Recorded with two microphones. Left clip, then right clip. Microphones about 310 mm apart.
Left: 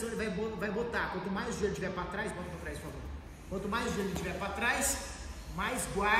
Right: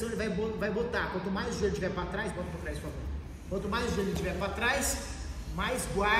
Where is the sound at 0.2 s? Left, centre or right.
Centre.